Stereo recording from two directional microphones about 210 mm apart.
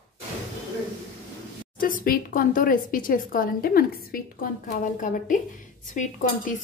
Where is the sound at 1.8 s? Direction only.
40° left (ahead or behind).